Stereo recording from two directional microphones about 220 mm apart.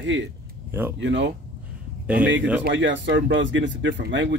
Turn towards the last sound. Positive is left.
turn(degrees=-55)  # may be behind; listen again after turning